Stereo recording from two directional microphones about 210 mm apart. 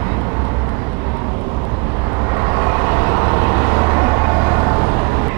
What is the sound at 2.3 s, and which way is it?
Vehicle, 20° right (ahead or behind).